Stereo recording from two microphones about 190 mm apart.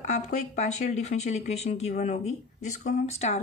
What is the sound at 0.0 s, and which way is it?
Speech, 40° left (ahead or behind).